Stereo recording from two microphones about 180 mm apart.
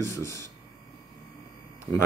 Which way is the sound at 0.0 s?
15° left (ahead or behind).